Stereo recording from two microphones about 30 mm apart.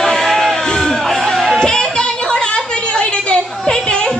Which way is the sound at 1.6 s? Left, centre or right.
Left.